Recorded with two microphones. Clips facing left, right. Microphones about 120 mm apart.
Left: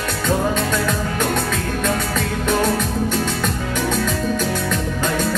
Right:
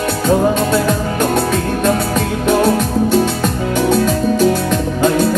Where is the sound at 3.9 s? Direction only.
45° right (ahead or behind).